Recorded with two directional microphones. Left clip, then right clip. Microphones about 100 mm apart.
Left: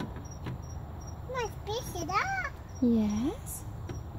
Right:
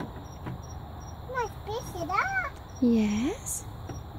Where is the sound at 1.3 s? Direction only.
20° right (ahead or behind).